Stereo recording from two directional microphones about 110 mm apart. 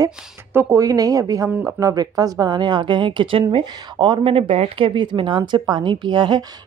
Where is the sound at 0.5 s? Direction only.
25° right (ahead or behind).